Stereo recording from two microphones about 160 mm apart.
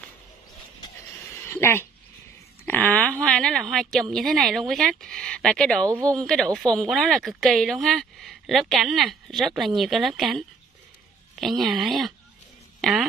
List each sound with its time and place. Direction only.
1.4 s a woman's voice: 15° left (ahead or behind)
5.9 s speech: 20° right (ahead or behind)
6.1 s a woman's voice: centre (ahead or behind)